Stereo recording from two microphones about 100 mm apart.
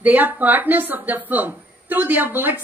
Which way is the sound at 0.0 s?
15° right (ahead or behind).